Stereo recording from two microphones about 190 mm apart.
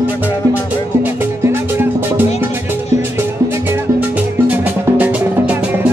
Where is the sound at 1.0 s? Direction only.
10° right (ahead or behind).